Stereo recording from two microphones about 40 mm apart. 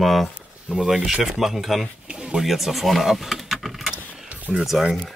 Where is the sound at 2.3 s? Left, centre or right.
Centre.